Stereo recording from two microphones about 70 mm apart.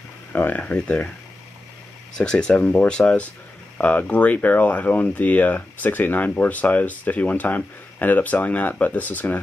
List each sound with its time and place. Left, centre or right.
0.3 s speech: left
0.6 s speech: centre
2.1 s speech: centre